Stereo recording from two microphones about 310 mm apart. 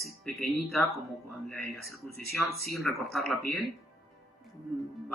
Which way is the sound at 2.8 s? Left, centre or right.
Centre.